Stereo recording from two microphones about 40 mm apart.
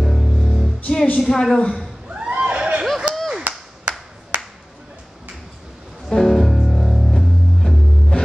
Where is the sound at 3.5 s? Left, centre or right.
Right.